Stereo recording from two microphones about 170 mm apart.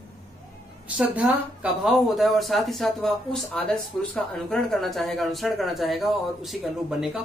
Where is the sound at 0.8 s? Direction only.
5° right (ahead or behind).